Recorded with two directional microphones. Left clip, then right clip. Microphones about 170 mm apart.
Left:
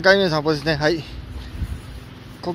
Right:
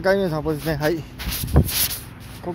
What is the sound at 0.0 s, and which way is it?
Speech, 10° right (ahead or behind).